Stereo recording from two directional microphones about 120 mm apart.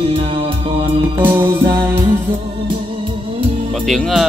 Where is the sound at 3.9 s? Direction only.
Centre (ahead or behind).